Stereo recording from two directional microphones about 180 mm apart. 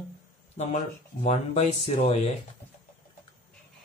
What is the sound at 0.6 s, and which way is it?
Speech, 40° left (ahead or behind).